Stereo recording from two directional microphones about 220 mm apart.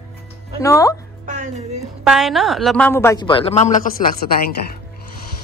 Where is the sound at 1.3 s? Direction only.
35° right (ahead or behind).